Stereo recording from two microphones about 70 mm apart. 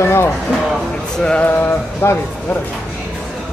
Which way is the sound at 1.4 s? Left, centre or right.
Left.